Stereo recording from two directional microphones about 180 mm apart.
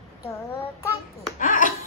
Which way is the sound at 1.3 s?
45° left (ahead or behind).